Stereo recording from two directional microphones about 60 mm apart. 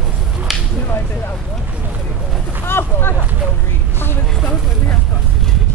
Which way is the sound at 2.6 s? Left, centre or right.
Left.